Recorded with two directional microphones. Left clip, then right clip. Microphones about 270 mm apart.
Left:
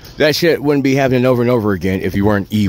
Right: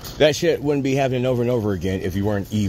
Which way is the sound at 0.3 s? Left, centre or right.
Left.